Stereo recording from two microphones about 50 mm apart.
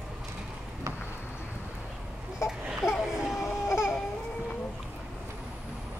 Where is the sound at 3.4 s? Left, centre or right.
Left.